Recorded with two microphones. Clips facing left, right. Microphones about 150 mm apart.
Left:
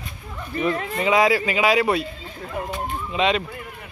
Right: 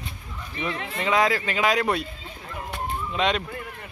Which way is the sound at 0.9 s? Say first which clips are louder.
Left 3 dB; 10° left (ahead or behind).